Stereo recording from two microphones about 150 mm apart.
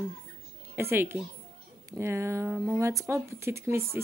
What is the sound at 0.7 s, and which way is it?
A woman's voice, 15° right (ahead or behind).